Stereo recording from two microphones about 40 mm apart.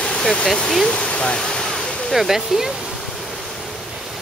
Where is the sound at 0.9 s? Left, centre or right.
Left.